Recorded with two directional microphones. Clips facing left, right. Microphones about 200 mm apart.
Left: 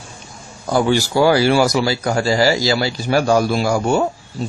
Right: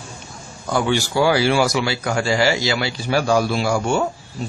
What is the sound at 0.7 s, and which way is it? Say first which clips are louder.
Speech: left 4 dB; 35° left (ahead or behind).